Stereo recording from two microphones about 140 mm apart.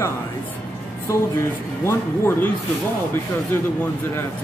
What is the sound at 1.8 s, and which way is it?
Speech, 20° left (ahead or behind).